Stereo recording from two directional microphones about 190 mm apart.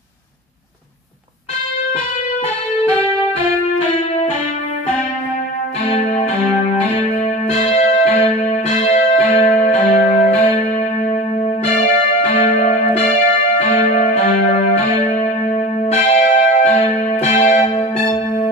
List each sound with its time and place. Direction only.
5.9 s music: 35° left (ahead or behind)
7.6 s music: 35° left (ahead or behind)
12.2 s music: 35° left (ahead or behind)
15.9 s church bell: 40° left (ahead or behind)